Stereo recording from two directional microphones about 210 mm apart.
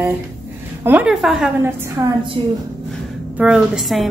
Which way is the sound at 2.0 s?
15° right (ahead or behind).